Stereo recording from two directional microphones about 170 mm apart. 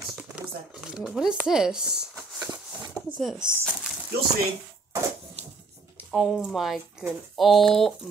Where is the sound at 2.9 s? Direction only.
5° right (ahead or behind).